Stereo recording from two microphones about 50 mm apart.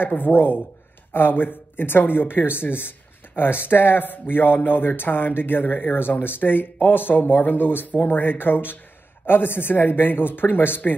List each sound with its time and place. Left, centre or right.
0.0 s speech: left